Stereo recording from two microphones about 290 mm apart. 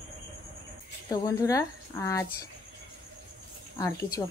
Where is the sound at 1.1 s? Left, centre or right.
Centre.